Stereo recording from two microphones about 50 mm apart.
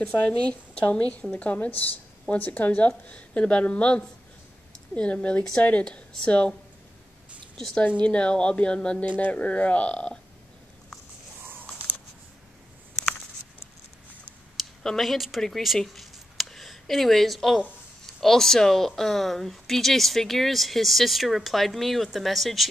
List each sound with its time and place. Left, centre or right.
0.2 s a woman's voice: left
5.9 s speech: centre
7.5 s a woman's voice: centre
8.0 s speech: left
9.1 s speech: left
14.6 s speech: centre
15.6 s a sound: centre
18.0 s speech: centre